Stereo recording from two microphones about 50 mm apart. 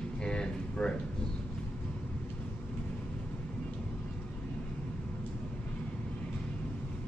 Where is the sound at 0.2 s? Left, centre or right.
Centre.